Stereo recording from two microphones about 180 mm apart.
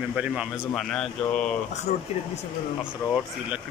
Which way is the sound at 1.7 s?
40° left (ahead or behind).